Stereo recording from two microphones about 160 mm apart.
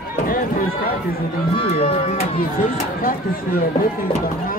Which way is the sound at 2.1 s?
60° left (ahead or behind).